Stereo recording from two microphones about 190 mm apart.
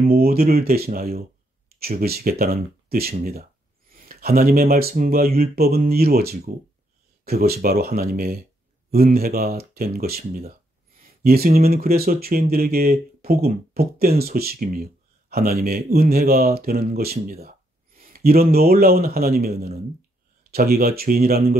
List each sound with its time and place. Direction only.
0.0 s speech: 55° right (ahead or behind)